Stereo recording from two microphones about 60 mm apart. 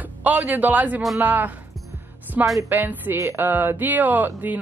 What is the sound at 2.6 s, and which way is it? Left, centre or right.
Speech, right.